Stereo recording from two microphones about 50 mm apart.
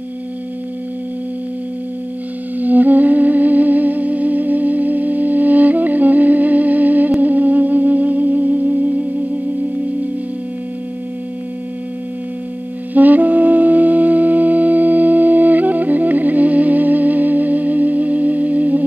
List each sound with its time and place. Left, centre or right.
2.6 s music: right
12.9 s music: right